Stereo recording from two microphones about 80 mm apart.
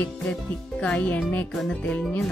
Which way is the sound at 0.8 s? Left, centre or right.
Centre.